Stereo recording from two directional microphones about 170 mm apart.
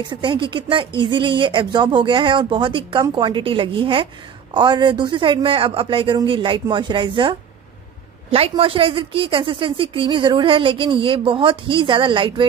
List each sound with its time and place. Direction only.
0.1 s a woman's voice: 30° right (ahead or behind)